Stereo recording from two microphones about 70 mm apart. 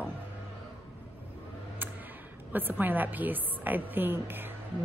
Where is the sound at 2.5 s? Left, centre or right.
Right.